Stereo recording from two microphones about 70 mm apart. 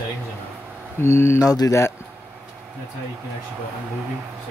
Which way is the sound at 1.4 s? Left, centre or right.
Left.